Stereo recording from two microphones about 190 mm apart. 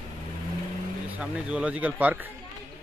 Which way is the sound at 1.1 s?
5° right (ahead or behind).